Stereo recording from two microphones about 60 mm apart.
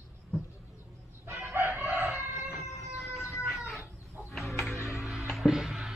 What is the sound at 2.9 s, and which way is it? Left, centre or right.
Music, centre.